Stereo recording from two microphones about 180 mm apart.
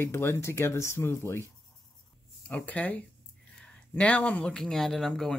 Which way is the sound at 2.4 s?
5° left (ahead or behind).